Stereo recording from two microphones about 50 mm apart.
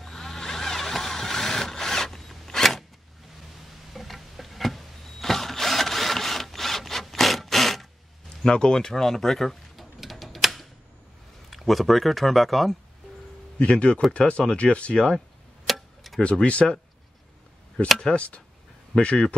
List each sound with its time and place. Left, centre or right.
0.0 s vehicle: centre
3.9 s drill: centre
8.5 s a sound: centre
11.5 s speech: centre
13.6 s speech: left
15.1 s tick-tock: centre
16.2 s speech: left
17.8 s speech: centre
18.1 s speech: left
18.9 s speech: centre